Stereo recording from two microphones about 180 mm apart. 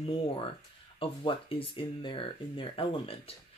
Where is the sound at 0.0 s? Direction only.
30° left (ahead or behind).